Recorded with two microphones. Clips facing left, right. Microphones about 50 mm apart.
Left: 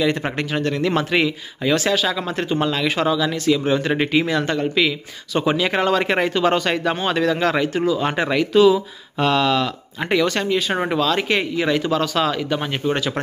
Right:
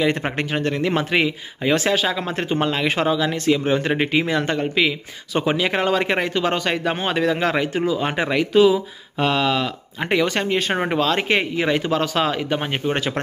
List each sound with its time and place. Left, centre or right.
0.0 s speech: right; by 6.8 s centre
6.8 s speech: centre
10.4 s speech: right